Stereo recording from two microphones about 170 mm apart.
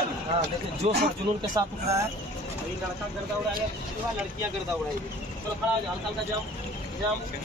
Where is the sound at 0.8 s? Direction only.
40° right (ahead or behind).